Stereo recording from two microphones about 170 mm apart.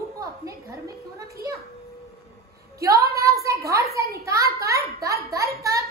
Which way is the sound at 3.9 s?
65° right (ahead or behind).